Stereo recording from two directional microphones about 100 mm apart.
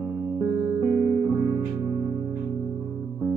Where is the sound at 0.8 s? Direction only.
25° right (ahead or behind).